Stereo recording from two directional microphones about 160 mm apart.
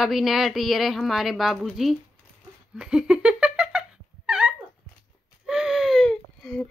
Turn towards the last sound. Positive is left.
turn(degrees=0)  # may be behind; listen again after turning